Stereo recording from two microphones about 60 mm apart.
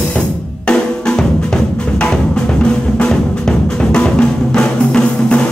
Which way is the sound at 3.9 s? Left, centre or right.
Centre.